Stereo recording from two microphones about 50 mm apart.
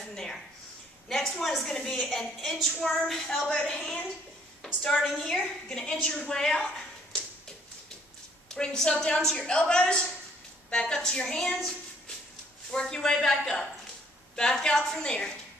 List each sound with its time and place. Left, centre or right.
0.1 s a sound: centre
1.0 s a woman's voice: centre
8.5 s a woman's voice: centre
12.7 s a woman's voice: centre